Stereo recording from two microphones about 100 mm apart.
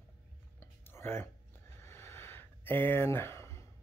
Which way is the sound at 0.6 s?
25° left (ahead or behind).